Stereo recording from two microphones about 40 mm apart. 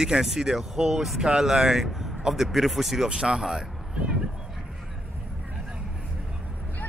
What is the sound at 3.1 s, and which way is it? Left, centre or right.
Speech, right.